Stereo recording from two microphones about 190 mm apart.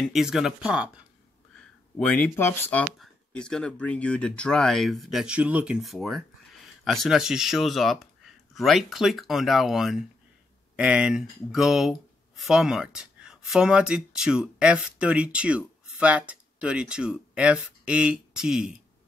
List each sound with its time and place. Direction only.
0.0 s speech: centre (ahead or behind)
2.0 s speech: 10° left (ahead or behind)